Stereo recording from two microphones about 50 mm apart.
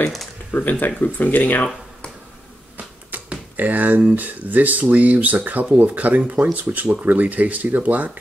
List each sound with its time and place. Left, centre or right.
0.5 s speech: left
2.8 s speech: right